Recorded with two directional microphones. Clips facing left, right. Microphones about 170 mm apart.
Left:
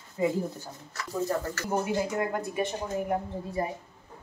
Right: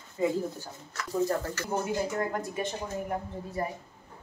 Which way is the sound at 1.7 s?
15° left (ahead or behind).